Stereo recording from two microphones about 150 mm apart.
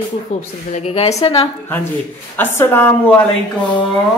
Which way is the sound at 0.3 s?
50° left (ahead or behind).